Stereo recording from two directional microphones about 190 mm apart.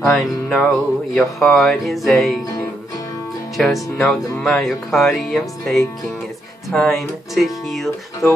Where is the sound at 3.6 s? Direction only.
5° left (ahead or behind).